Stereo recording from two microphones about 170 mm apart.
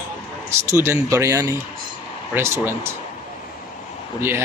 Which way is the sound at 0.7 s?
15° right (ahead or behind).